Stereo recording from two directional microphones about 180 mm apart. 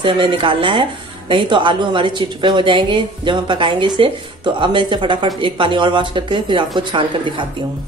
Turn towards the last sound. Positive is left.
turn(degrees=-25)  # may be behind; listen again after turning